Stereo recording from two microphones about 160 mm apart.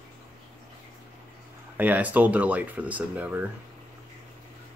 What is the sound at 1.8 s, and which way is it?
Speech, 10° right (ahead or behind).